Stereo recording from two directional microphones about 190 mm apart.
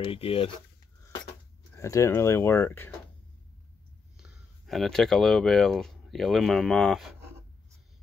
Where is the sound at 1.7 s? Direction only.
15° left (ahead or behind).